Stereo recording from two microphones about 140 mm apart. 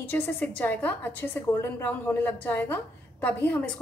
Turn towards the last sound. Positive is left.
turn(degrees=10)  # may be behind; listen again after turning